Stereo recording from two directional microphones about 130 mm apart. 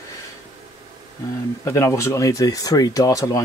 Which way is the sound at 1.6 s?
20° left (ahead or behind).